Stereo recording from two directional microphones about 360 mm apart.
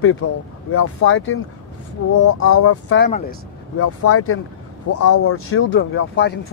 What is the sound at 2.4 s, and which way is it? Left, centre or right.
Speech, left.